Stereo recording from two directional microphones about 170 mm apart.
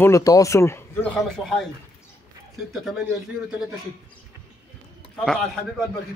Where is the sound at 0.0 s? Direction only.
20° left (ahead or behind).